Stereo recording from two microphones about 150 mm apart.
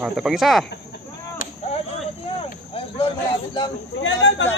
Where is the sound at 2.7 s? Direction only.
35° left (ahead or behind).